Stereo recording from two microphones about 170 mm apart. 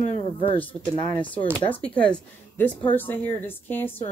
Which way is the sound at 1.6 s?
10° left (ahead or behind).